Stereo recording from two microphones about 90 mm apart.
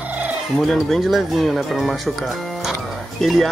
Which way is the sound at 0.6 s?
5° left (ahead or behind).